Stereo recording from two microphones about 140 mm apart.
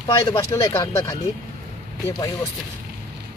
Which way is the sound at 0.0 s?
35° left (ahead or behind).